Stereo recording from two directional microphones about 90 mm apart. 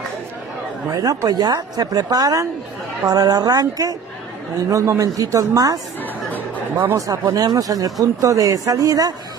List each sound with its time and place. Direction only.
0.8 s a woman's voice: 40° right (ahead or behind)
7.0 s speech: 40° right (ahead or behind)